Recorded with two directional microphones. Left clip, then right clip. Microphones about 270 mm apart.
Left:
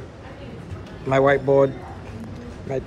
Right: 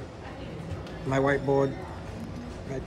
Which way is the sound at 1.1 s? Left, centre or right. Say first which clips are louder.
Left 8 dB; centre.